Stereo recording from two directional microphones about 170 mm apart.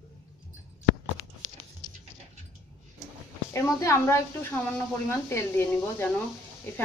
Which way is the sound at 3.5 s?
15° left (ahead or behind).